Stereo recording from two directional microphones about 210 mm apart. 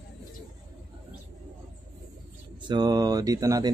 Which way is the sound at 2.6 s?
20° right (ahead or behind).